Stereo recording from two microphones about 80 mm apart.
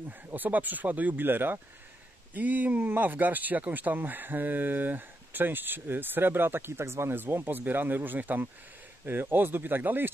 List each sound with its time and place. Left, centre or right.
0.3 s speech: right